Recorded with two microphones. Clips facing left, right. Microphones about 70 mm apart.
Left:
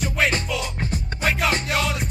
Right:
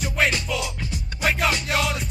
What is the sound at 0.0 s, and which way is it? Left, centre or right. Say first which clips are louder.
Music: even; centre.